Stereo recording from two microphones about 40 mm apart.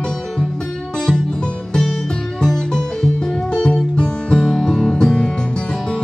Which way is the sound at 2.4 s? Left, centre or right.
Centre.